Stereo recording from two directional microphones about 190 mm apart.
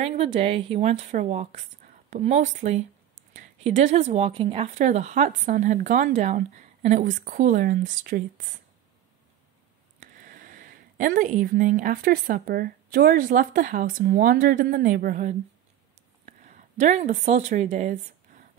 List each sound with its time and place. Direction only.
0.0 s speech: 35° right (ahead or behind)
9.9 s a woman's voice: 45° right (ahead or behind)